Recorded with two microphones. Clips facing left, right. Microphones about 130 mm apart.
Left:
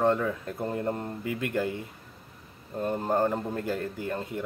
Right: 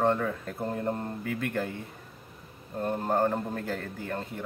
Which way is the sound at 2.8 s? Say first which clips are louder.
Left 1 dB; 15° left (ahead or behind).